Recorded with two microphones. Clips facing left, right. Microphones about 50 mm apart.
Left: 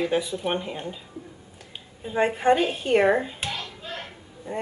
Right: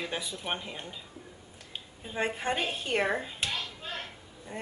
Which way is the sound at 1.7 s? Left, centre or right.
Centre.